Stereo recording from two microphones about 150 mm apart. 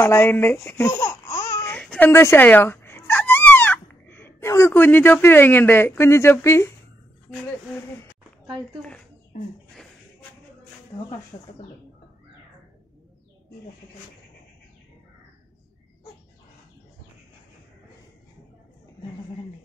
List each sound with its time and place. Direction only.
0.0 s speech: 15° left (ahead or behind)
8.5 s speech: 5° left (ahead or behind)